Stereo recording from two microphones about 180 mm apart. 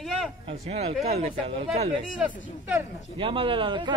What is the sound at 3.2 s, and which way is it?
Speech, 30° right (ahead or behind).